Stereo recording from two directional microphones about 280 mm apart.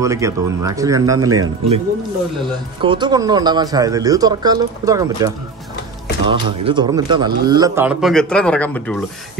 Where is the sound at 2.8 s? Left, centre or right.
Centre.